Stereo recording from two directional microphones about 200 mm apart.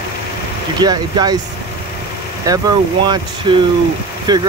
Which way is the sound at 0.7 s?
20° right (ahead or behind).